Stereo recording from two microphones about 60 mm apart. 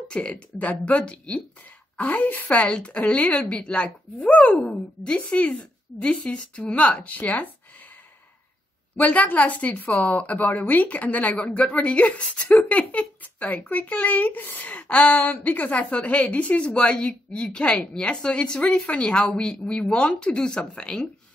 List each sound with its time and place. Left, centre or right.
0.1 s a woman's voice: left
8.9 s a woman's voice: left